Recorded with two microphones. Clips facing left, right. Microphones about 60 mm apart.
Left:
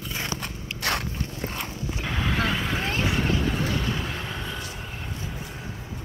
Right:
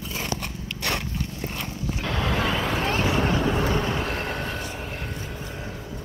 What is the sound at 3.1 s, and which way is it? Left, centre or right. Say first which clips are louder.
Vehicle: right 3 dB; right.